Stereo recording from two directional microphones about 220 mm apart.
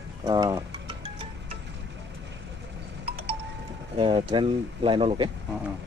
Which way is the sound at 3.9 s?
25° right (ahead or behind).